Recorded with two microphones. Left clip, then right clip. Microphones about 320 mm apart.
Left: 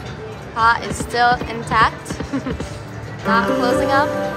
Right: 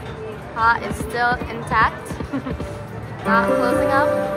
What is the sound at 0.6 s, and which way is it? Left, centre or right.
Speech, centre.